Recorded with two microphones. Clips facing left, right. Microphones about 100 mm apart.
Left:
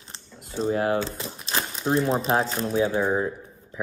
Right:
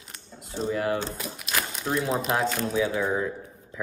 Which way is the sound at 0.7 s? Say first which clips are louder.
Left 3 dB; 45° left (ahead or behind).